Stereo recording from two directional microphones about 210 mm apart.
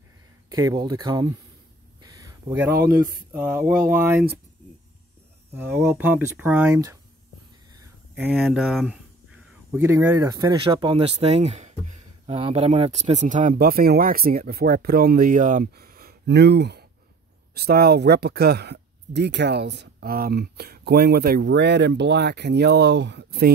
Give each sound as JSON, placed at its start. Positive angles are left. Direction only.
{"t": 0.5, "sound": "speech", "side_deg": -20}
{"t": 2.0, "sound": "a sound", "side_deg": -15}
{"t": 3.3, "sound": "speech", "side_deg": -5}
{"t": 5.5, "sound": "speech", "side_deg": -10}
{"t": 8.2, "sound": "speech", "side_deg": -5}